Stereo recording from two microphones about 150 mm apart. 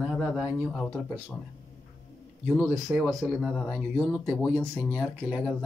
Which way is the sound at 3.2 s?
5° left (ahead or behind).